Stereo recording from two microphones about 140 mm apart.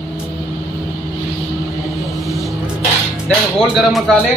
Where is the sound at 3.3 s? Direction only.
Centre (ahead or behind).